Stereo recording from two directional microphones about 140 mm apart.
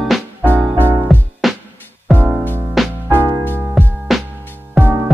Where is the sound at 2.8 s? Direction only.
Centre (ahead or behind).